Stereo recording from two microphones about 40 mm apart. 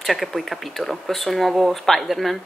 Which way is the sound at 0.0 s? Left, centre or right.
Centre.